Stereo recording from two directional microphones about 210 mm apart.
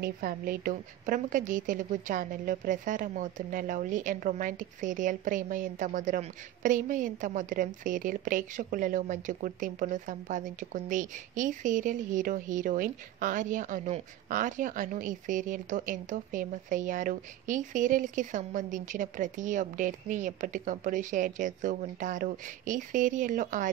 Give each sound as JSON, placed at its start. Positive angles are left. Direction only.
{"t": 0.0, "sound": "a woman's voice", "side_deg": -45}